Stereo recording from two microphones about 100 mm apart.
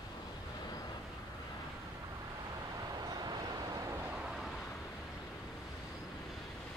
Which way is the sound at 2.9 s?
40° right (ahead or behind).